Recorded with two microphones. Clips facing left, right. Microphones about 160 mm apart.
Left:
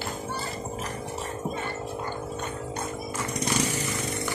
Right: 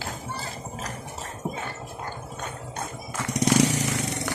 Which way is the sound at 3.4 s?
90° right.